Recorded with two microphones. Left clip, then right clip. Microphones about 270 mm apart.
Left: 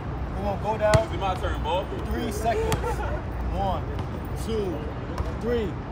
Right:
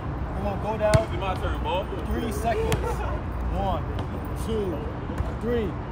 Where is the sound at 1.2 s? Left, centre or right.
Left.